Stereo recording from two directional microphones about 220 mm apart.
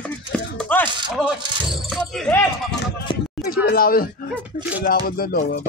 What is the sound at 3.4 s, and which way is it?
Speech, 40° left (ahead or behind).